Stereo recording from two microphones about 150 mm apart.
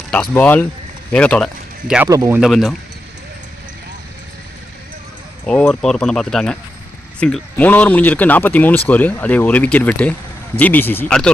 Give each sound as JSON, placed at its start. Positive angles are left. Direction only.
{"t": 0.1, "sound": "speech", "side_deg": 10}
{"t": 2.0, "sound": "speech", "side_deg": -20}
{"t": 2.4, "sound": "speech", "side_deg": 0}
{"t": 5.4, "sound": "speech", "side_deg": 5}